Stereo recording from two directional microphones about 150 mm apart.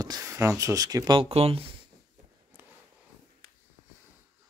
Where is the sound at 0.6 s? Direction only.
20° right (ahead or behind); by 1.6 s 40° right (ahead or behind).